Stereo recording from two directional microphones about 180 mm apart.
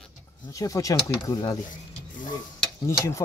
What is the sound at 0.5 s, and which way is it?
Speech, 20° left (ahead or behind).